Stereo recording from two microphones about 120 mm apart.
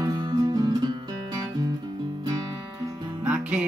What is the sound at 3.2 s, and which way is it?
Music, 10° right (ahead or behind).